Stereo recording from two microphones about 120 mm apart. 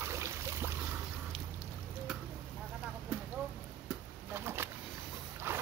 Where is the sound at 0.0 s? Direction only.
20° right (ahead or behind).